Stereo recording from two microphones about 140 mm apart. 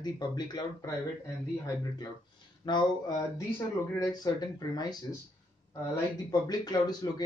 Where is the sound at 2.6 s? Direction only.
30° left (ahead or behind).